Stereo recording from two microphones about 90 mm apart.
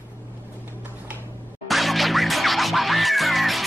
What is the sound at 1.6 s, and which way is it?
Music, centre (ahead or behind).